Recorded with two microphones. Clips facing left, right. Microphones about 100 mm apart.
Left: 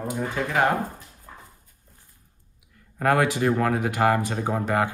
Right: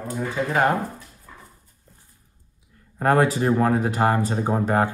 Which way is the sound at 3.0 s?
30° right (ahead or behind).